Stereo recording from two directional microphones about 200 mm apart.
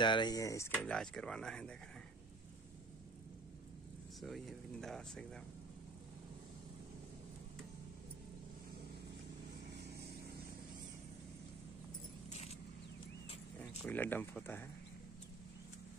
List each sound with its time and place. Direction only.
0.0 s speech: 20° left (ahead or behind); by 1.8 s 5° left (ahead or behind)
4.2 s speech: centre (ahead or behind)
9.8 s vehicle: 55° right (ahead or behind)
12.3 s vehicle: 35° left (ahead or behind)
13.6 s speech: 10° left (ahead or behind)